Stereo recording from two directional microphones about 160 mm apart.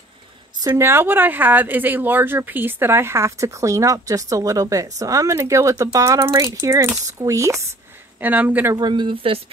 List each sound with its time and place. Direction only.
0.7 s speech: 15° right (ahead or behind)
8.7 s speech: 30° right (ahead or behind)